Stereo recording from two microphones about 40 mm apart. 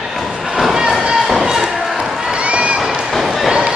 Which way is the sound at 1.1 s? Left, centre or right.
Centre.